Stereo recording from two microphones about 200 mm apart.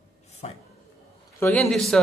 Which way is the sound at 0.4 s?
30° left (ahead or behind).